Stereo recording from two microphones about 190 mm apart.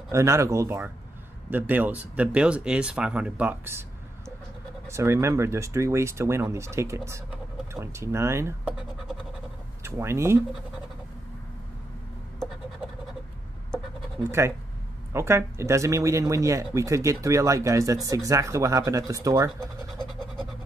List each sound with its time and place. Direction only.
0.1 s speech: 15° right (ahead or behind)
4.8 s speech: 15° right (ahead or behind)
9.8 s speech: 15° right (ahead or behind)
14.4 s speech: 15° right (ahead or behind)
20.0 s scratch: 5° left (ahead or behind)